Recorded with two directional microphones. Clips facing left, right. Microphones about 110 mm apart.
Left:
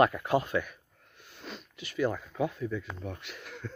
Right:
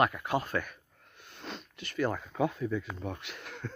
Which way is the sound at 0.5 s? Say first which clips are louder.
Left 3 dB; 5° left (ahead or behind).